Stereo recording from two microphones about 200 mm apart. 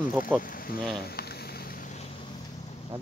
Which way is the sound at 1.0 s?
50° left (ahead or behind).